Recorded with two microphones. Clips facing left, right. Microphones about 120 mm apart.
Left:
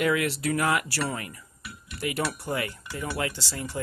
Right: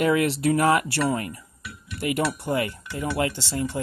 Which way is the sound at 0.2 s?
25° right (ahead or behind).